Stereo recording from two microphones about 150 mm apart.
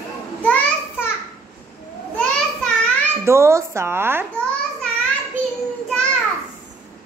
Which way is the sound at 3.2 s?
15° right (ahead or behind).